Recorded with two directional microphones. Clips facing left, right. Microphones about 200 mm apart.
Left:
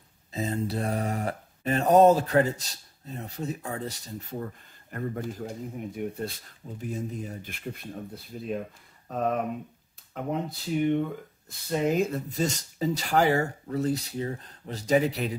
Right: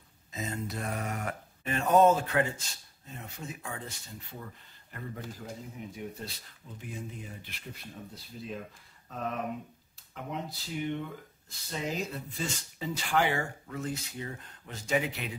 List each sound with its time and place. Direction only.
0.3 s mantra: 35° left (ahead or behind)
4.9 s speech: 50° left (ahead or behind)
6.8 s speech: 40° left (ahead or behind)